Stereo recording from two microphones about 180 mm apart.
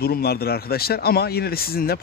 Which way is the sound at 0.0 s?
60° left (ahead or behind).